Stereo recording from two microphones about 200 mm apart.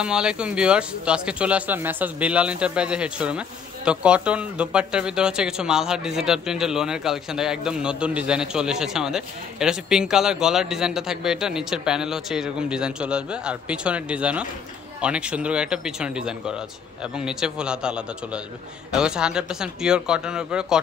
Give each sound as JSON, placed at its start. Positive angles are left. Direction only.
{"t": 0.0, "sound": "speech", "side_deg": -5}